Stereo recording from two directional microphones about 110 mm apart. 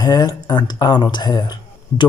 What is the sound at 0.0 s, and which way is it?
Speech, 40° left (ahead or behind).